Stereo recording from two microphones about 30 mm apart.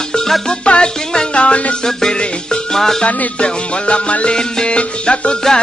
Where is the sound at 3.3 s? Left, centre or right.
Left.